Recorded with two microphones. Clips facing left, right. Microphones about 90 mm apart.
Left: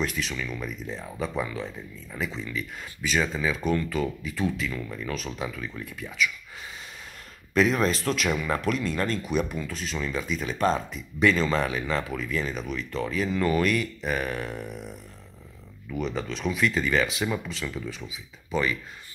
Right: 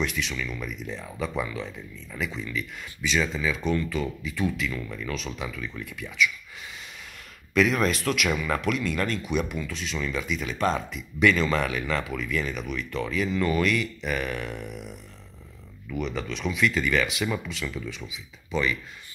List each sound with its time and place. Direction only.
0.0 s speech: 40° left (ahead or behind)
7.5 s speech: 35° left (ahead or behind)